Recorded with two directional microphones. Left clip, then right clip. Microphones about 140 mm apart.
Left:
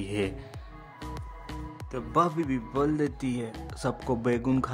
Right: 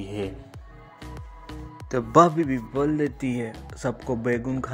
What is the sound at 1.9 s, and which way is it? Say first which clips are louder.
Speech: right 9 dB; 30° right (ahead or behind).